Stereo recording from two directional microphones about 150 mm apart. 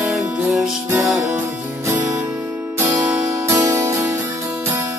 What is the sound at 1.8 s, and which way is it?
Music, 15° right (ahead or behind).